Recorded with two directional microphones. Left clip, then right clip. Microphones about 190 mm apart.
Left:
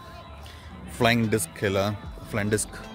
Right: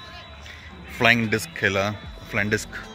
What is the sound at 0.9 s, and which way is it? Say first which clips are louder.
Speech: right 4 dB; 10° left (ahead or behind).